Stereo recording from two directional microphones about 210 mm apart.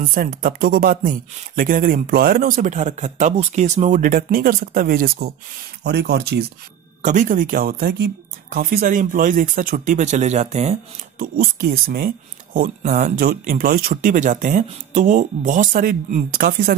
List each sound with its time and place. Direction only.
0.0 s speech: 40° right (ahead or behind)
7.0 s speech: 35° right (ahead or behind)
11.3 s speech: 45° right (ahead or behind)